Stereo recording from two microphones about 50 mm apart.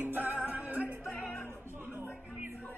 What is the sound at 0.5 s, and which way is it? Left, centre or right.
Music, right.